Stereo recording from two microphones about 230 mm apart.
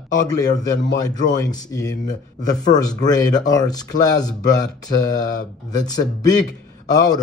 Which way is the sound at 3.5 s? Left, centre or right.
Centre.